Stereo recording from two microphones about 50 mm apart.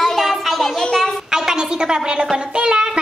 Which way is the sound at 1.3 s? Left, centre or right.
Centre.